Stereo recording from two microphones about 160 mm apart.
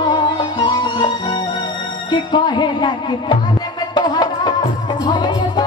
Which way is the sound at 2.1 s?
30° left (ahead or behind).